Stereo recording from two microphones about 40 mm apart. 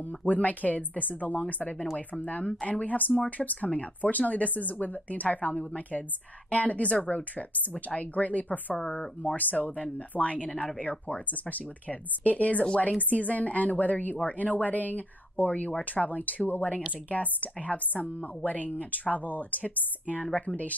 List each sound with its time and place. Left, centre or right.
0.0 s speech: left